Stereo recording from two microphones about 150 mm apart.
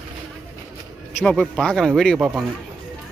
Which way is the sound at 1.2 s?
Centre (ahead or behind).